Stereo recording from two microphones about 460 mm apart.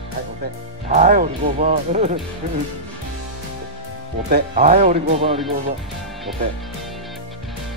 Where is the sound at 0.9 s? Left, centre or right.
Centre.